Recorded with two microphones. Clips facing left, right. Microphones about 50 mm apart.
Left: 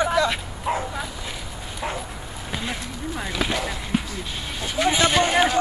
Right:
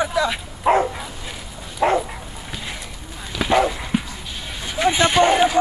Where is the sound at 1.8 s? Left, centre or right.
Right.